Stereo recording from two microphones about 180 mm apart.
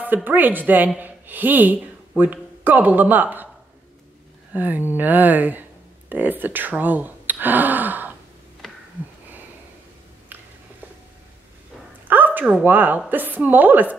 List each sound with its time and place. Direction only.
0.0 s a woman's voice: 10° right (ahead or behind)
4.6 s speech: 10° right (ahead or behind)
12.1 s a woman's voice: 10° right (ahead or behind)